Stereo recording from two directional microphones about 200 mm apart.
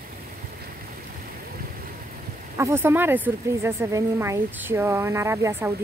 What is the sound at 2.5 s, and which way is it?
A woman's voice, 10° right (ahead or behind).